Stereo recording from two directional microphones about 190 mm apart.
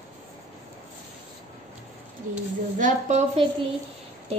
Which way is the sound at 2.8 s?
40° right (ahead or behind).